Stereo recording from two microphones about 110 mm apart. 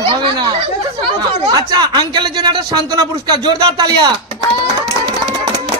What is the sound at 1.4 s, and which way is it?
Speech, 40° right (ahead or behind).